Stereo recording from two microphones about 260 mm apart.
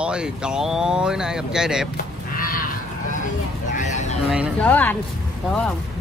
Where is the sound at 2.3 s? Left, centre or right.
Left.